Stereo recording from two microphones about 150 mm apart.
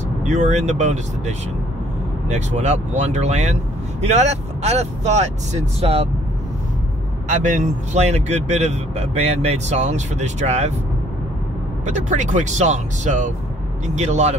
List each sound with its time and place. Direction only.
0.2 s speech: 50° right (ahead or behind)
7.2 s speech: 55° right (ahead or behind)
11.8 s speech: 50° right (ahead or behind)